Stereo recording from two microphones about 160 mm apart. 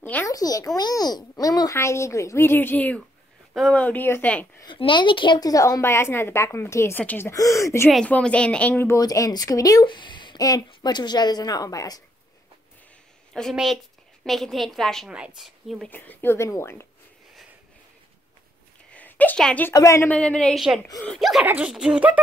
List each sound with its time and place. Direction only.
0.0 s a sound: 10° left (ahead or behind)
0.3 s a woman's voice: 20° left (ahead or behind)
4.6 s a woman's voice: 30° left (ahead or behind)
7.9 s speech: 5° left (ahead or behind); by 12.0 s 20° left (ahead or behind)
13.3 s a woman's voice: centre (ahead or behind)
15.9 s a woman's voice: 10° left (ahead or behind)
18.9 s a sound: 10° left (ahead or behind)
19.7 s a woman's voice: 20° left (ahead or behind); by 22.2 s 5° right (ahead or behind)